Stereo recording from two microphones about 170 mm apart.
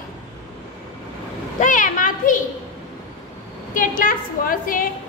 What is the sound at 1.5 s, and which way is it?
Speech, 50° left (ahead or behind).